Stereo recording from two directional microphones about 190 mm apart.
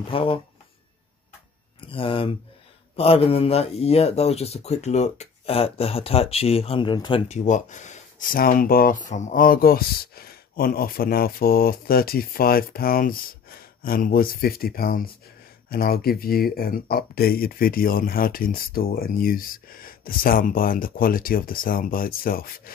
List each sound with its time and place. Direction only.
0.1 s speech: 30° left (ahead or behind)
1.8 s speech: 30° left (ahead or behind); by 22.5 s 50° left (ahead or behind)